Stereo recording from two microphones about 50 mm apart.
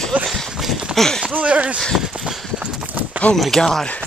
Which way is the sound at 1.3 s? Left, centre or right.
Right.